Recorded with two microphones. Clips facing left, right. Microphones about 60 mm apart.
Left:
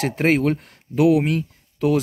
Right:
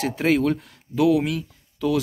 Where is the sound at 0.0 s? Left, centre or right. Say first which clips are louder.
Left 2 dB; left.